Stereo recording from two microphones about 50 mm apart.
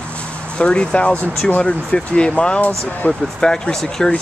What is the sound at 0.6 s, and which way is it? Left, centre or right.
Speech, left.